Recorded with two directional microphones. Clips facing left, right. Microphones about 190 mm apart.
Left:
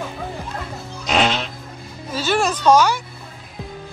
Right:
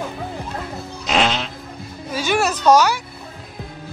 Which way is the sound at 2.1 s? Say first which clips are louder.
Even; 10° right (ahead or behind).